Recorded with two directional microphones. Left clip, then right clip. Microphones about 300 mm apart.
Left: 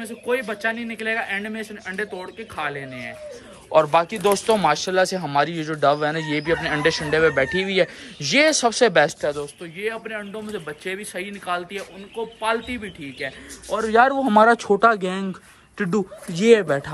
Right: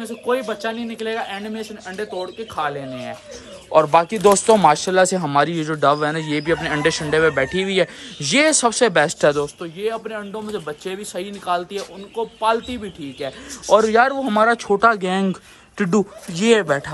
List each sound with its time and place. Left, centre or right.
0.0 s speech: centre
9.2 s speech: right
9.6 s speech: centre
13.8 s speech: centre